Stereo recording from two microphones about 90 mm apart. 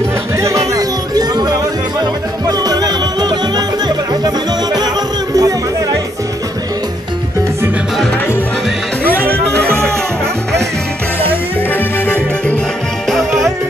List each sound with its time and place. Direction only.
0.4 s music: 35° right (ahead or behind)
5.3 s music: 45° right (ahead or behind)
9.0 s music: 20° left (ahead or behind)
11.7 s music: 20° left (ahead or behind)
13.1 s music: centre (ahead or behind)